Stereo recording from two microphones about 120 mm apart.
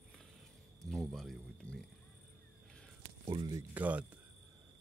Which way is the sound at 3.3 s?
40° right (ahead or behind).